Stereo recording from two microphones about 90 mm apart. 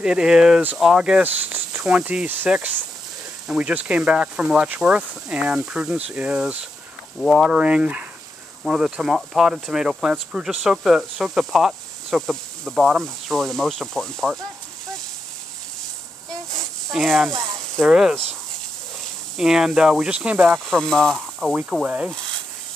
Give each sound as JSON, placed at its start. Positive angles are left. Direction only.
{"t": 0.0, "sound": "speech", "side_deg": -10}
{"t": 1.2, "sound": "cricket", "side_deg": -20}
{"t": 1.9, "sound": "speech", "side_deg": -10}
{"t": 7.5, "sound": "speech", "side_deg": -15}
{"t": 16.9, "sound": "speech", "side_deg": 0}
{"t": 19.3, "sound": "speech", "side_deg": -5}
{"t": 20.5, "sound": "speech", "side_deg": 5}
{"t": 21.8, "sound": "speech", "side_deg": -15}